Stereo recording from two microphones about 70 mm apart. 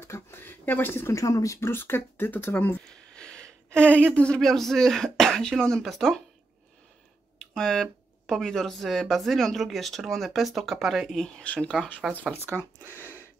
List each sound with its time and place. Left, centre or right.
0.0 s speech: left
1.1 s speech: left
1.7 s speech: left
3.2 s a sound: centre
4.1 s speech: centre
7.3 s speech: centre
11.4 s speech: centre
12.4 s speech: left